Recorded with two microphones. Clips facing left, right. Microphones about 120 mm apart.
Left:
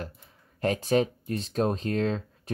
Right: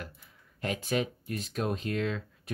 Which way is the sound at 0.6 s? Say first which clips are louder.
Left 7 dB; 40° left (ahead or behind).